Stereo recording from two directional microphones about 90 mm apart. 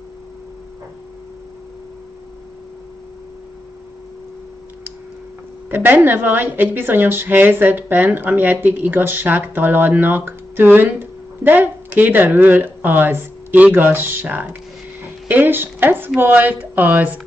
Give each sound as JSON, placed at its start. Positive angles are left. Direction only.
{"t": 5.7, "sound": "a woman's voice", "side_deg": -20}